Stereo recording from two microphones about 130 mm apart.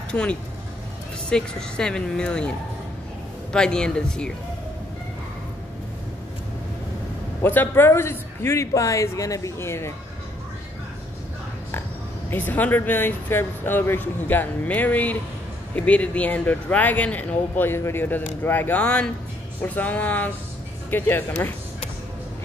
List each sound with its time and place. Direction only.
0.1 s speech: 10° left (ahead or behind)
3.5 s speech: 5° left (ahead or behind)
7.4 s a man's voice: 15° left (ahead or behind)
12.3 s speech: 15° left (ahead or behind)